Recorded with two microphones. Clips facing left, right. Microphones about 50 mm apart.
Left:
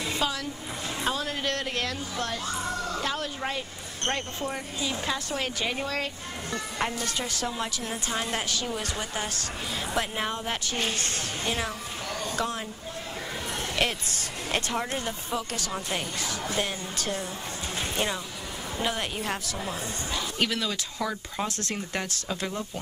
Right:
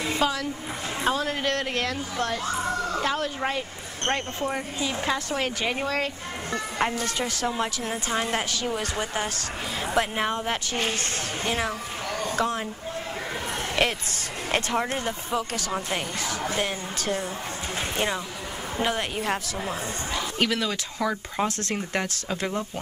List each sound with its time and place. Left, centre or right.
0.0 s a sound: right
1.0 s a woman's voice: right
4.0 s a woman's voice: right
13.8 s a woman's voice: right
17.7 s a sound: right
18.8 s a woman's voice: right
21.5 s speech: right